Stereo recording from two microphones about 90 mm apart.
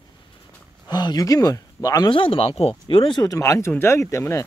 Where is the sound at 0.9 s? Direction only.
50° left (ahead or behind).